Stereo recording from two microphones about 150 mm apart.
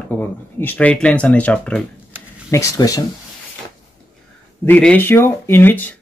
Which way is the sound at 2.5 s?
20° left (ahead or behind).